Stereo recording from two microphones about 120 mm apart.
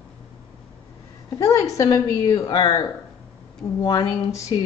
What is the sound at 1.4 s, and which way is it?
A woman's voice, 30° left (ahead or behind).